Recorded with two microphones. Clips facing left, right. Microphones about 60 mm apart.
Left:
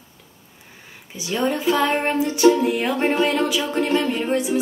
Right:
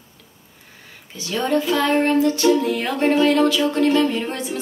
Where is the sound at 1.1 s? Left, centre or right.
Centre.